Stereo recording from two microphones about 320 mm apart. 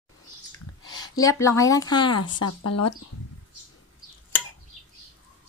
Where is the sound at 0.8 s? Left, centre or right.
Centre.